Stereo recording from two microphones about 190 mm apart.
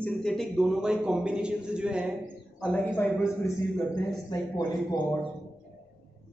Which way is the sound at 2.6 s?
10° left (ahead or behind).